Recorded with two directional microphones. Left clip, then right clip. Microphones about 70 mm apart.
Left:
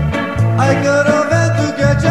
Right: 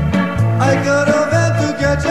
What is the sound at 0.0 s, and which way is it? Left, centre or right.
Music, left.